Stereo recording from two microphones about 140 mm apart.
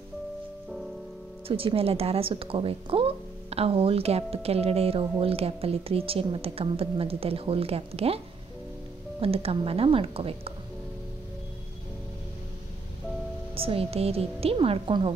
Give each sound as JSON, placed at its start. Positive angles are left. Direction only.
{"t": 1.5, "sound": "a woman's voice", "side_deg": -40}
{"t": 9.2, "sound": "a woman's voice", "side_deg": -45}
{"t": 13.6, "sound": "a woman's voice", "side_deg": -40}